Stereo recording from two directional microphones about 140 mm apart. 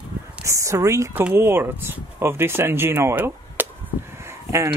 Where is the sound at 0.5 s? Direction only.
20° right (ahead or behind).